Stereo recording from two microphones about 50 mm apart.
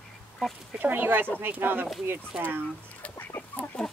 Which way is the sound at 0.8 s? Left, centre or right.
Right.